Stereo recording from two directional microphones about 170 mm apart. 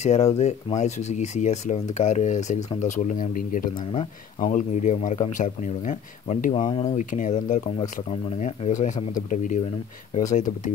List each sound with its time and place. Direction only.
0.0 s speech: 40° left (ahead or behind)
6.5 s speech: 30° left (ahead or behind)
6.8 s speech: 45° left (ahead or behind)